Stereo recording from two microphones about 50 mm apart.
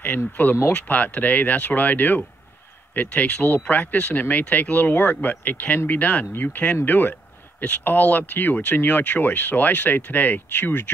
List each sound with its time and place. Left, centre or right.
0.4 s speech: left